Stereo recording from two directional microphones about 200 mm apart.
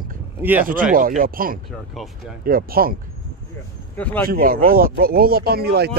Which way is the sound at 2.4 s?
45° right (ahead or behind).